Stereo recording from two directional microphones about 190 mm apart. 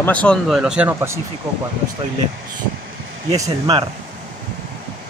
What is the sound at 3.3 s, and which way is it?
Speech, 20° right (ahead or behind).